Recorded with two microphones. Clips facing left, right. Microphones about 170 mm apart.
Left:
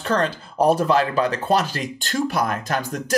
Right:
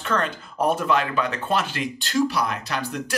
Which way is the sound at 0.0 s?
35° left (ahead or behind).